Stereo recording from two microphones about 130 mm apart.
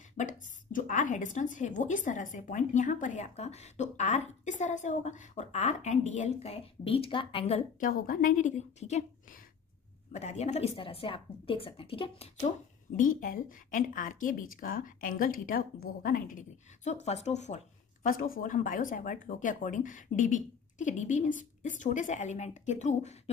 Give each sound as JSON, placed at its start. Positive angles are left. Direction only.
{"t": 0.2, "sound": "a woman's voice", "side_deg": 80}
{"t": 6.5, "sound": "speech", "side_deg": 45}
{"t": 7.8, "sound": "a woman's voice", "side_deg": 90}
{"t": 10.1, "sound": "speech", "side_deg": 60}
{"t": 12.4, "sound": "a woman's voice", "side_deg": 80}
{"t": 18.0, "sound": "speech", "side_deg": 90}